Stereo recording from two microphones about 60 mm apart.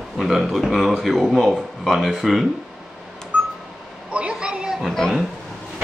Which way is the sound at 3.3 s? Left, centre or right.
Centre.